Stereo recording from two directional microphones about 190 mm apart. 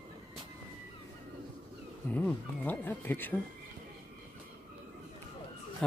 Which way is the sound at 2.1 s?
10° left (ahead or behind).